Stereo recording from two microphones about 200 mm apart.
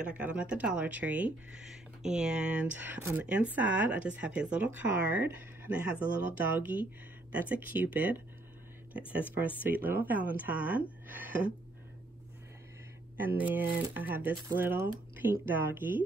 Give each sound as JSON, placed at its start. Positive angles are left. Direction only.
{"t": 0.0, "sound": "speech", "side_deg": -5}
{"t": 9.6, "sound": "speech", "side_deg": -10}
{"t": 13.2, "sound": "speech", "side_deg": -10}